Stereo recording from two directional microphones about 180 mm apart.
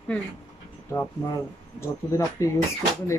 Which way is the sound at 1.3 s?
15° left (ahead or behind).